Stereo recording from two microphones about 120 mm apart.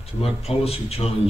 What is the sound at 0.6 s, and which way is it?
Speech, 55° left (ahead or behind).